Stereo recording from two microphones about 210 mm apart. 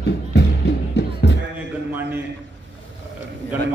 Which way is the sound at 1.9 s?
10° right (ahead or behind).